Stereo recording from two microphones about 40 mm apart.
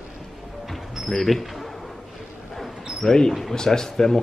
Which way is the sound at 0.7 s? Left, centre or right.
Centre.